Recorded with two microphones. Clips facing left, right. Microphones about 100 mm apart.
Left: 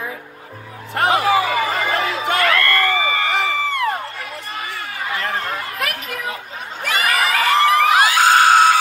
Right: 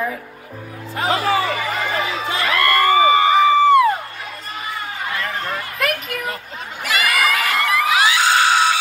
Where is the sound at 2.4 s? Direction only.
15° right (ahead or behind).